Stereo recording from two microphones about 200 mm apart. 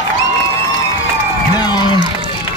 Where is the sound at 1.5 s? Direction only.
20° left (ahead or behind).